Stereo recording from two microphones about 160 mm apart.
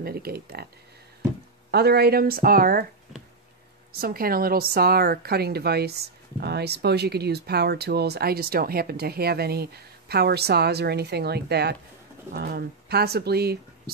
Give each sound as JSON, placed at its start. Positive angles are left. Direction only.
{"t": 0.0, "sound": "speech", "side_deg": -75}
{"t": 1.7, "sound": "speech", "side_deg": -90}
{"t": 4.0, "sound": "a woman's voice", "side_deg": -65}
{"t": 12.3, "sound": "a woman's voice", "side_deg": -75}